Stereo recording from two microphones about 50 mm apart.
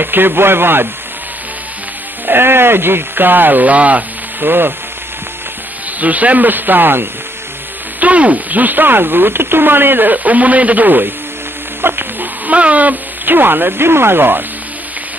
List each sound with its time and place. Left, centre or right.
0.0 s speech: right
2.2 s speech: right
4.5 s speech: right
5.9 s speech: right
8.0 s speech: right
11.8 s music: right
12.4 s speech: right